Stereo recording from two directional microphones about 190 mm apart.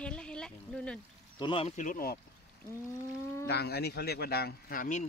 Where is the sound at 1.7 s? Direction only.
45° left (ahead or behind).